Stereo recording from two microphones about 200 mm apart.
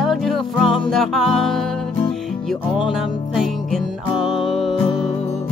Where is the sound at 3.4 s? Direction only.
Centre (ahead or behind).